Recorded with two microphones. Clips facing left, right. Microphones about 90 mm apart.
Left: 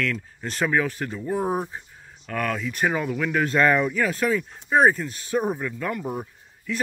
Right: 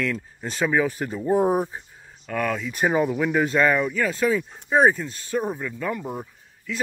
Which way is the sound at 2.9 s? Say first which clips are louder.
Right 5 dB; 20° right (ahead or behind).